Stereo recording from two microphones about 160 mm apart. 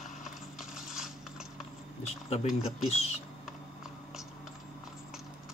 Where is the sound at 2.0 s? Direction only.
40° left (ahead or behind).